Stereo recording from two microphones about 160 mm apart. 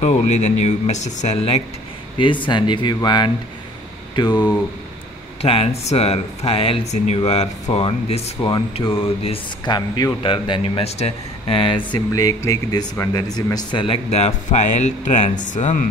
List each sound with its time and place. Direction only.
0.7 s speech: 45° left (ahead or behind)